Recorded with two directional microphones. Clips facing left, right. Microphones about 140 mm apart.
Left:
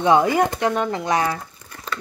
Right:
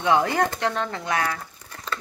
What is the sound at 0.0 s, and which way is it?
Speech, 20° left (ahead or behind).